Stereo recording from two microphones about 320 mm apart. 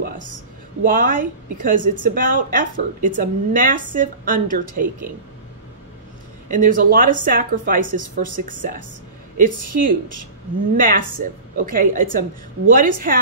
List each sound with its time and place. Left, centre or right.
0.0 s a woman's voice: right
6.5 s speech: right